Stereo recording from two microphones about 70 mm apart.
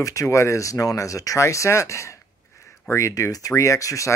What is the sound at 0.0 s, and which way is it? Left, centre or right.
Speech, left.